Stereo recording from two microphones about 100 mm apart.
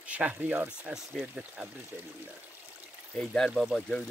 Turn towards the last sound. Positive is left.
turn(degrees=0)  # may be behind; listen again after turning